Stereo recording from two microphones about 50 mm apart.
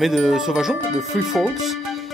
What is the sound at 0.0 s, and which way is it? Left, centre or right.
Speech, centre.